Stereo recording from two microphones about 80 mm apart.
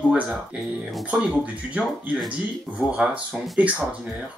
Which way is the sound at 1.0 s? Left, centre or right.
Centre.